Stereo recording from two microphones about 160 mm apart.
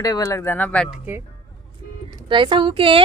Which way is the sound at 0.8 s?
5° right (ahead or behind).